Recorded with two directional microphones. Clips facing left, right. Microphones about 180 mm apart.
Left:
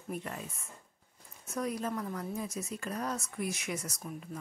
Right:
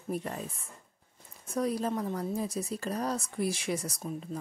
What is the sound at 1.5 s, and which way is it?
Speech, 35° right (ahead or behind).